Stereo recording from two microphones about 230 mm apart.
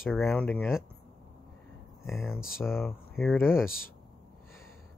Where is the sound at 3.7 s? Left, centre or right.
Left.